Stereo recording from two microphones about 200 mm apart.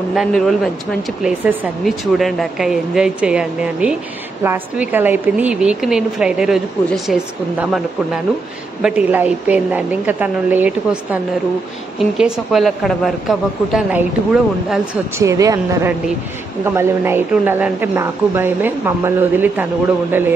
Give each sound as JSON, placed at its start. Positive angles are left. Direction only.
{"t": 0.1, "sound": "a woman's voice", "side_deg": 0}
{"t": 15.1, "sound": "a woman's voice", "side_deg": -15}